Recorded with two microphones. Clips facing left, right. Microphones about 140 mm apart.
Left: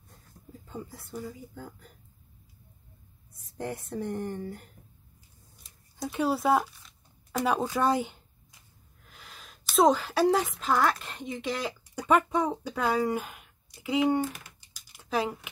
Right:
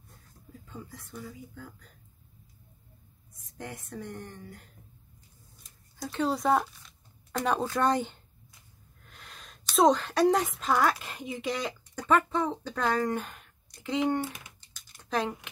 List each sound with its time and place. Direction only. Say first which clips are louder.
0.7 s speech: left 4 dB; 35° left (ahead or behind)
3.4 s speech: left 6 dB; 35° left (ahead or behind)
6.1 s a woman's voice: left 1 dB; 5° left (ahead or behind)